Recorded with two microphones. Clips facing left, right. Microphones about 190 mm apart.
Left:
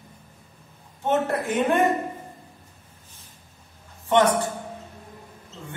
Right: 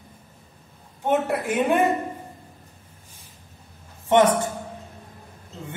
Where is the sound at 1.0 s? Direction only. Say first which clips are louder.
Right 1 dB; 10° right (ahead or behind).